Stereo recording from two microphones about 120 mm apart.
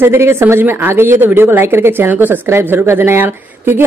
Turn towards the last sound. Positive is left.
turn(degrees=-15)  # may be behind; listen again after turning